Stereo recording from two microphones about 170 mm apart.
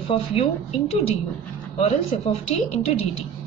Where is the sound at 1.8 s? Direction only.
35° left (ahead or behind).